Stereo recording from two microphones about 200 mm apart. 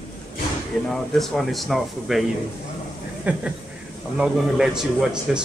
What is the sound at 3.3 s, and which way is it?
Speech, 5° right (ahead or behind).